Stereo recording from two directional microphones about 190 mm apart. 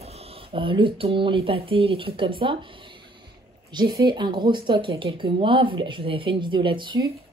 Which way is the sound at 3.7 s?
20° right (ahead or behind).